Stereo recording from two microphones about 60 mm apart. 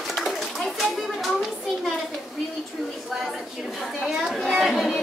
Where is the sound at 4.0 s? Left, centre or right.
Centre.